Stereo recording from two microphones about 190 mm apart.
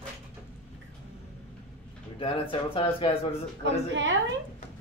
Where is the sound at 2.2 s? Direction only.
30° left (ahead or behind).